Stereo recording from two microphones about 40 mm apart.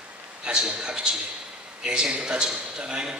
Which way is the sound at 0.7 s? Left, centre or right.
Right.